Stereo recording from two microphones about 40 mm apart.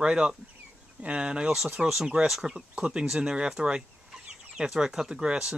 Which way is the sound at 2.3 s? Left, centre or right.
Centre.